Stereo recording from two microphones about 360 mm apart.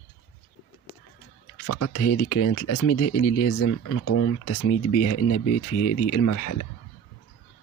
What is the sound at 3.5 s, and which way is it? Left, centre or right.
Speech, left.